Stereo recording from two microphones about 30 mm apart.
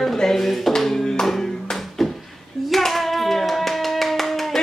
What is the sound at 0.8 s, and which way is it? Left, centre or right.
Music, centre.